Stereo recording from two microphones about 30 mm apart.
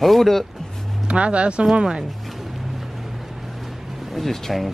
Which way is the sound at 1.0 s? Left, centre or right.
Right.